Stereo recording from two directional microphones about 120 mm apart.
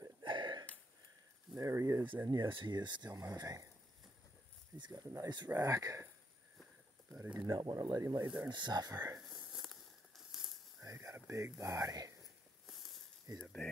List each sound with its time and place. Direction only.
0.2 s a sound: 40° right (ahead or behind)
1.6 s speech: 25° right (ahead or behind)
2.2 s speech: 40° right (ahead or behind)
4.7 s speech: 40° right (ahead or behind)
7.3 s speech: 35° right (ahead or behind)
9.3 s tearing: centre (ahead or behind)
10.8 s speech: 25° right (ahead or behind)
13.3 s speech: 30° right (ahead or behind)